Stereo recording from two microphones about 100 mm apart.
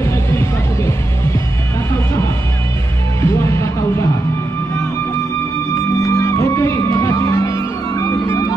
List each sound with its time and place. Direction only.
0.0 s music: 25° left (ahead or behind)
3.2 s music: 25° left (ahead or behind)
6.0 s music: 30° left (ahead or behind)